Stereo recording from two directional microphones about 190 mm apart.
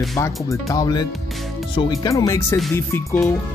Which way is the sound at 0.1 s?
15° left (ahead or behind).